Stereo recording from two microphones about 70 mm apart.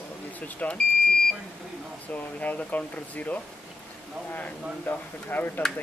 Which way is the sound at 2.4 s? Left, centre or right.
Left.